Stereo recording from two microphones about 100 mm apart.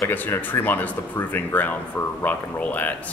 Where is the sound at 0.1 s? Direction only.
20° left (ahead or behind).